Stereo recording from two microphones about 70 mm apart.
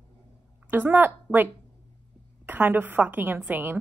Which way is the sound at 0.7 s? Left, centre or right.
Right.